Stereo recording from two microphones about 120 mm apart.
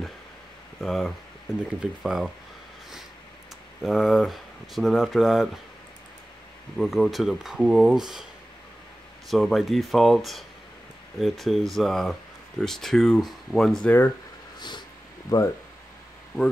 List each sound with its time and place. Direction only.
0.7 s speech: centre (ahead or behind)
3.8 s speech: centre (ahead or behind)
6.8 s speech: centre (ahead or behind)
9.3 s speech: centre (ahead or behind)
13.8 s speech: 15° left (ahead or behind)
15.2 s speech: 30° left (ahead or behind)